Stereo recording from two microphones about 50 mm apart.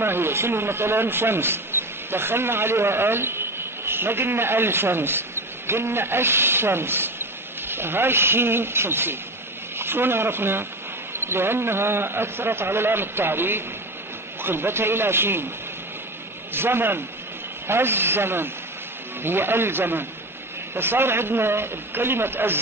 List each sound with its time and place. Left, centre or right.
0.0 s a man's voice: right
16.5 s a man's voice: right